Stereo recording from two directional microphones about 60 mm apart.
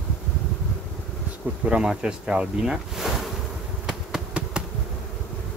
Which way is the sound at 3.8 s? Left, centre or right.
Centre.